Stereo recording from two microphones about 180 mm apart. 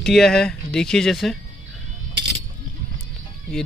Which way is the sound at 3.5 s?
5° left (ahead or behind).